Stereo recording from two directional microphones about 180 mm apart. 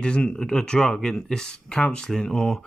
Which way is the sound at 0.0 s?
5° left (ahead or behind).